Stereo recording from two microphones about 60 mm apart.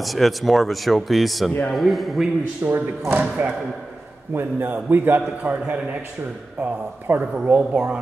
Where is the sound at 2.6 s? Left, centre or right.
Right.